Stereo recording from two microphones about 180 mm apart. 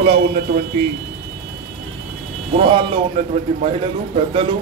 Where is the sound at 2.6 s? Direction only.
30° right (ahead or behind).